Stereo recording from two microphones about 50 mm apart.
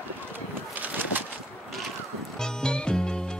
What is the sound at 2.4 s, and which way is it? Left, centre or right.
Music, centre.